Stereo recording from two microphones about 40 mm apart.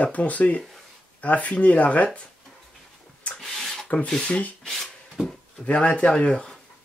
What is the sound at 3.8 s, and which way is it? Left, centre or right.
Speech, left.